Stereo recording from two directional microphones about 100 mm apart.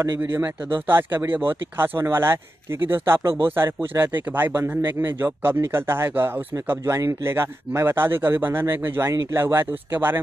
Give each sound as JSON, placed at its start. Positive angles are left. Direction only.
{"t": 0.2, "sound": "speech", "side_deg": -20}